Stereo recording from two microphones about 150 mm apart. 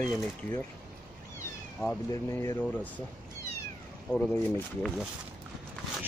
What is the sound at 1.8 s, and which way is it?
Speech, 5° left (ahead or behind).